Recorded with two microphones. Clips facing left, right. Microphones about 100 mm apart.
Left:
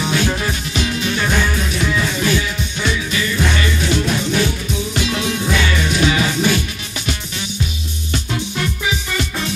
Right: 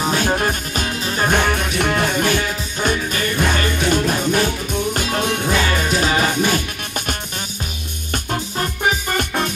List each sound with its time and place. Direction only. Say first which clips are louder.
0.0 s music: right 1 dB; 40° right (ahead or behind)
8.1 s music: even; 45° right (ahead or behind)